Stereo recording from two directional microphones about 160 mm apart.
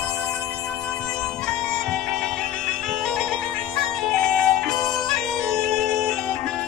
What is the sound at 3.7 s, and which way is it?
Bagpipes, centre (ahead or behind).